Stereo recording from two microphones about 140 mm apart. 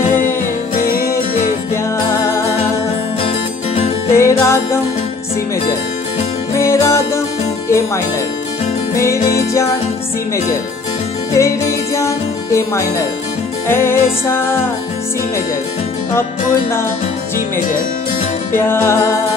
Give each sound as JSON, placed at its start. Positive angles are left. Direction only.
{"t": 0.0, "sound": "music", "side_deg": 70}
{"t": 0.7, "sound": "music", "side_deg": 90}
{"t": 2.2, "sound": "music", "side_deg": 20}
{"t": 3.3, "sound": "music", "side_deg": 45}
{"t": 4.1, "sound": "music", "side_deg": 20}
{"t": 6.5, "sound": "music", "side_deg": 20}
{"t": 8.9, "sound": "speech", "side_deg": 20}
{"t": 11.3, "sound": "speech", "side_deg": 20}
{"t": 13.7, "sound": "music", "side_deg": 15}
{"t": 18.5, "sound": "music", "side_deg": 15}